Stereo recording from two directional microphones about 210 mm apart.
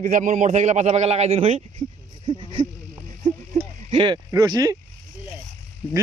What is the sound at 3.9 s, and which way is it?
Speech, 20° right (ahead or behind).